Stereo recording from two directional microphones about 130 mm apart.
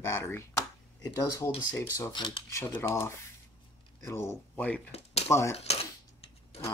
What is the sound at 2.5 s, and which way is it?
Speech, 20° left (ahead or behind).